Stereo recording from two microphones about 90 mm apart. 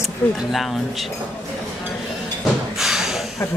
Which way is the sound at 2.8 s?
5° right (ahead or behind).